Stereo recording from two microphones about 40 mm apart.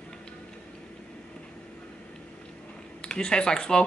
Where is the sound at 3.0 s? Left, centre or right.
Left.